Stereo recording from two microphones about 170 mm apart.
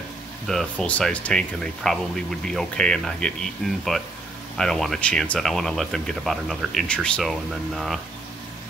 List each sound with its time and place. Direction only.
0.5 s speech: 5° left (ahead or behind)